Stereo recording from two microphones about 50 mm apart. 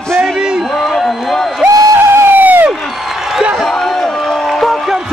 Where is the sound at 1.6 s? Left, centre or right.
Right.